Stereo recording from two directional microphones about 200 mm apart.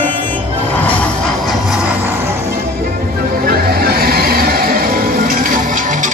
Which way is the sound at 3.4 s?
50° right (ahead or behind).